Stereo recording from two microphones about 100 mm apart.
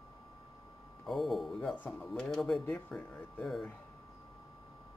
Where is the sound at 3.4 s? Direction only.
Centre (ahead or behind).